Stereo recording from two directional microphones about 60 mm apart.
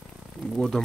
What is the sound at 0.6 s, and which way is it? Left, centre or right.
Speech, centre.